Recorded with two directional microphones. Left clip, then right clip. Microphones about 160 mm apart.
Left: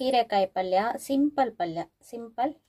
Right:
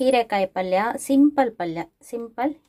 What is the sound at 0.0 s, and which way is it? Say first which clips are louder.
A woman's voice: right 4 dB; 20° right (ahead or behind).